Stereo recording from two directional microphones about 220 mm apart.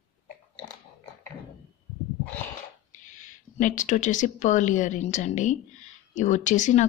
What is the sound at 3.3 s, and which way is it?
A woman's voice, 35° left (ahead or behind).